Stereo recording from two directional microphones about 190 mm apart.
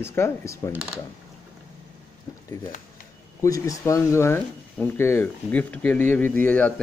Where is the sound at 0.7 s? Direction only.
5° right (ahead or behind).